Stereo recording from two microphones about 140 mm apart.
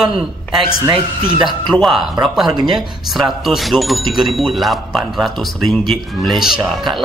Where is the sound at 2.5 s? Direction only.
30° right (ahead or behind).